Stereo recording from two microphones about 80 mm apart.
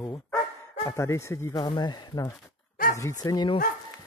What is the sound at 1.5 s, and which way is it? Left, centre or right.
Speech, left.